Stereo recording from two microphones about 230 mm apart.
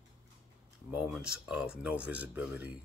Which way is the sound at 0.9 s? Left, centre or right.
Centre.